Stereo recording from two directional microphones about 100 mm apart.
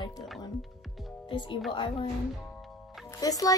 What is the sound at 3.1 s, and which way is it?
Speech, 35° left (ahead or behind).